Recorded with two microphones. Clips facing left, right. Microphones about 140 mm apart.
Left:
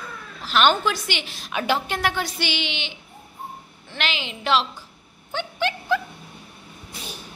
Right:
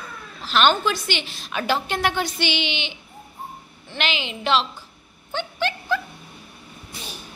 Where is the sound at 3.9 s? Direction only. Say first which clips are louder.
Right 2 dB; centre (ahead or behind).